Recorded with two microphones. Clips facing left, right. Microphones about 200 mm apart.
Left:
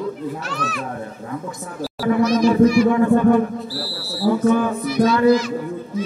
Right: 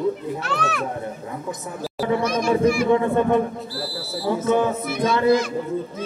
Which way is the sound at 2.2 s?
50° right (ahead or behind).